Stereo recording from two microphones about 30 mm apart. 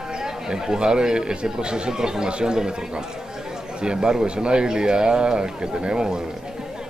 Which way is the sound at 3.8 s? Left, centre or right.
Right.